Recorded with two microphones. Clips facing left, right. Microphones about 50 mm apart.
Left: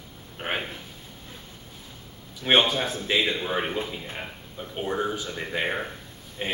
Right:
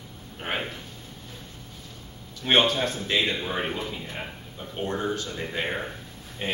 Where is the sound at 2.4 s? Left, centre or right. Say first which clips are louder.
Even; centre.